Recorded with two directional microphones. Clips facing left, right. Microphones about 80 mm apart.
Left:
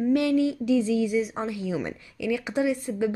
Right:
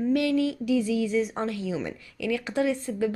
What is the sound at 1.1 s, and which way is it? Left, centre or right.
Speech, centre.